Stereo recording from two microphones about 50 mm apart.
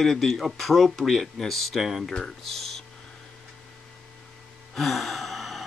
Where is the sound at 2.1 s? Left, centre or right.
Centre.